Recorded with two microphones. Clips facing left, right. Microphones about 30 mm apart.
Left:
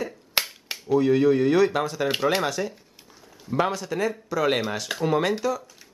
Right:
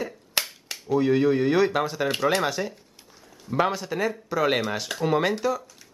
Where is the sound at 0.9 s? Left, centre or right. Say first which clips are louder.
Left 2 dB; centre.